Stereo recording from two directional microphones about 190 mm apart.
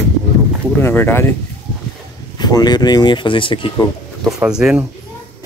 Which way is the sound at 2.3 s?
20° left (ahead or behind).